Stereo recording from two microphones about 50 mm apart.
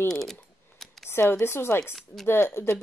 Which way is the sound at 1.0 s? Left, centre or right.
Left.